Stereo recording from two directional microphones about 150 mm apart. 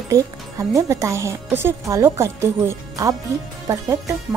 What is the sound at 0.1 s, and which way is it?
Speech, 20° right (ahead or behind).